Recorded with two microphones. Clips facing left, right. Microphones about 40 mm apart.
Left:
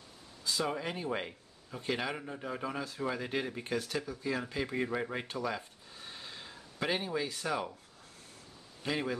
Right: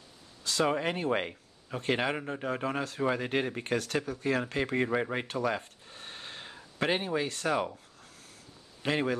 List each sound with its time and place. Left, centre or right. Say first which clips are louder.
0.4 s a sound: right 5 dB; right
0.7 s speech: right 6 dB; right
3.6 s speech: right 4 dB; right
4.8 s speech: right 5 dB; right
5.3 s gasp: right 5 dB; right
6.8 s speech: right 4 dB; right
8.8 s a man's voice: right 5 dB; right